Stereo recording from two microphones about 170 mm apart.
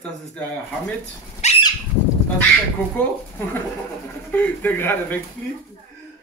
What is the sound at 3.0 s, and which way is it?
A man's voice, 15° left (ahead or behind).